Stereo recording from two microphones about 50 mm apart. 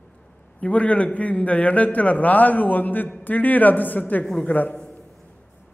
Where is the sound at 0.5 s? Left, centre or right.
Left.